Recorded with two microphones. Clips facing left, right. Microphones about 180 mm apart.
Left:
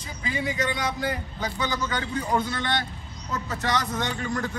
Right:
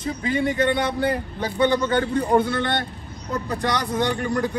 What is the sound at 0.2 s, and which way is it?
A man's voice, 55° right (ahead or behind).